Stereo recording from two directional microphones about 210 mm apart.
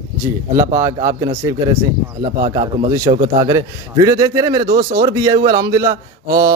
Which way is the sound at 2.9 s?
15° right (ahead or behind).